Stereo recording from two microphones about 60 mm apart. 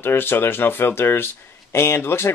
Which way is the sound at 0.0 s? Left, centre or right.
Left.